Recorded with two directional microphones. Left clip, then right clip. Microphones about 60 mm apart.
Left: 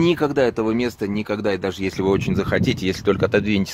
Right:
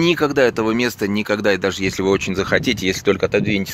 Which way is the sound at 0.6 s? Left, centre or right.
Centre.